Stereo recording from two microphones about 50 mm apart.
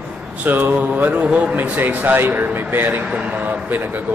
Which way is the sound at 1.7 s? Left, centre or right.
Right.